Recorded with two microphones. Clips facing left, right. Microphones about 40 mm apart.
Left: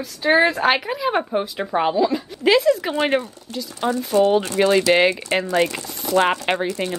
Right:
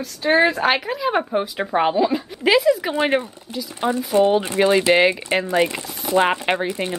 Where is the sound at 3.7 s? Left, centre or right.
Right.